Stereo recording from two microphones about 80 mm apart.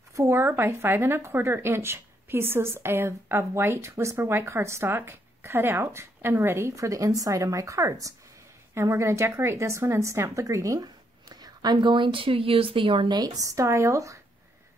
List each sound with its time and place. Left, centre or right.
0.1 s speech: right
13.2 s speech: right